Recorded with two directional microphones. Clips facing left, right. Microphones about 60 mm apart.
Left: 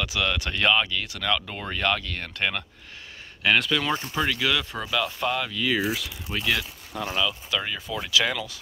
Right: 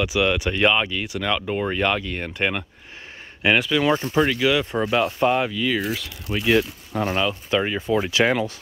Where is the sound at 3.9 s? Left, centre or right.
Right.